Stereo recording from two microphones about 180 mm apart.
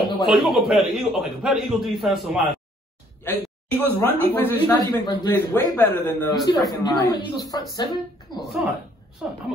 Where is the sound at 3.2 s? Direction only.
10° left (ahead or behind).